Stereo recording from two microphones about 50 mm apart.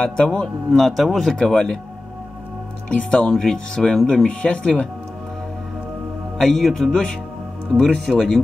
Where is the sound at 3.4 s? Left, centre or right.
Centre.